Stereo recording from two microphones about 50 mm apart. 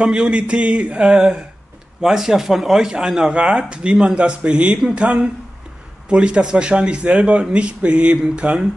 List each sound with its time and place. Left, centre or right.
0.0 s a man's voice: right